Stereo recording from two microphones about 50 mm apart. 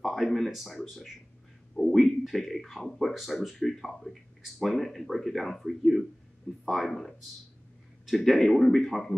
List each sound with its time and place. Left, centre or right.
0.0 s speech: centre
1.8 s a sound: centre
2.2 s speech: centre